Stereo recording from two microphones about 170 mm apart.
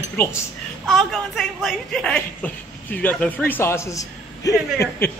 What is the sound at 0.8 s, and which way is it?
A woman's voice, centre (ahead or behind).